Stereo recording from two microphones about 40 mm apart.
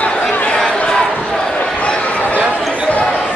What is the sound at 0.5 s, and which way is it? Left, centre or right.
Crowd, left.